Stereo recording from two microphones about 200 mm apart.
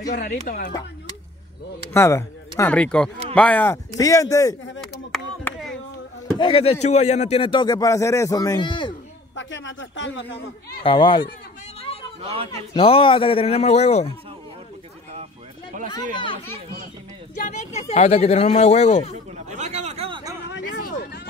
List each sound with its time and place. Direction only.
0.1 s speech: 45° left (ahead or behind)
2.0 s speech: 15° left (ahead or behind)
5.1 s a sound: centre (ahead or behind)
6.3 s speech: 25° left (ahead or behind)
9.3 s a man's voice: 65° left (ahead or behind)
10.8 s speech: 25° left (ahead or behind)
11.8 s a sound: 30° left (ahead or behind)
12.2 s a man's voice: 30° right (ahead or behind)
12.7 s speech: 25° left (ahead or behind)
15.9 s speech: 25° left (ahead or behind)
17.4 s speech: 35° left (ahead or behind)
19.3 s a sound: 35° right (ahead or behind)